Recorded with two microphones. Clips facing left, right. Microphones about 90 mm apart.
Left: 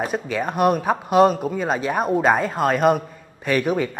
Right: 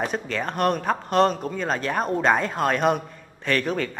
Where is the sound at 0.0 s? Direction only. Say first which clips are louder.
Left 3 dB; 5° left (ahead or behind).